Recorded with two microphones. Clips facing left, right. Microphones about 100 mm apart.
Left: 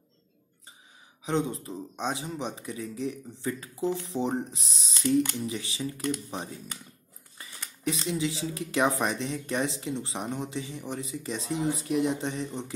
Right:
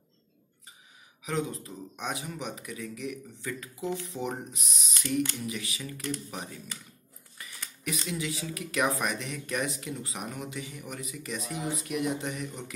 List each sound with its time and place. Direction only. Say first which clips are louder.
1.2 s speech: left 4 dB; 30° left (ahead or behind)